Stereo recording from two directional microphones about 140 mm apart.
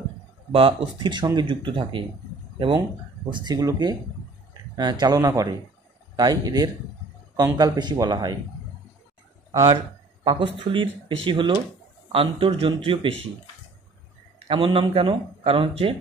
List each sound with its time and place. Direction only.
0.5 s speech: 40° right (ahead or behind)
3.3 s a man's voice: 30° right (ahead or behind)
10.2 s speech: 35° right (ahead or behind)
14.5 s speech: 35° right (ahead or behind)